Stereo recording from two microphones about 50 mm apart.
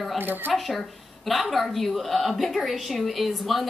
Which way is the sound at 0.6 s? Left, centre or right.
Centre.